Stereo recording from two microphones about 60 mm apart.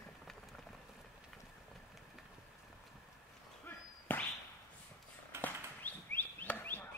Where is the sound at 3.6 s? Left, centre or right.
Left.